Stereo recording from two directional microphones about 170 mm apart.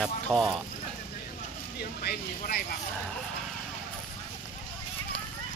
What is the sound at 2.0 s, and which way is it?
Speech, 60° left (ahead or behind).